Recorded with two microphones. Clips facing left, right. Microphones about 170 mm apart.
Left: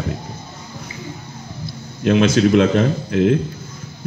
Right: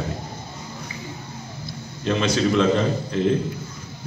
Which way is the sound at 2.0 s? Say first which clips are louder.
Left 7 dB; 55° left (ahead or behind).